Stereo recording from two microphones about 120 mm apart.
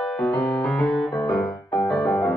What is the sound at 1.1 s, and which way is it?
Music, 30° left (ahead or behind).